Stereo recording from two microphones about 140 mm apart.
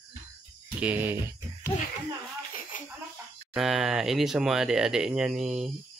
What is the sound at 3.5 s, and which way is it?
Speech, centre (ahead or behind).